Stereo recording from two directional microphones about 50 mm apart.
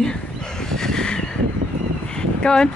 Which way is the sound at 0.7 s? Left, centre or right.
Centre.